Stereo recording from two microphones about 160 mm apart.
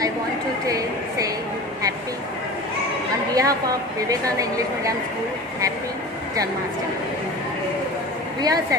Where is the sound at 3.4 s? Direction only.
20° right (ahead or behind).